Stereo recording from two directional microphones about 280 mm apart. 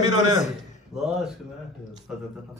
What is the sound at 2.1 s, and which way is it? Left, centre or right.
Speech, centre.